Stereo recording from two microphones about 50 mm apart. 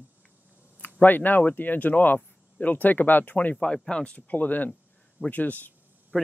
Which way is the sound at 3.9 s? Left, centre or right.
Left.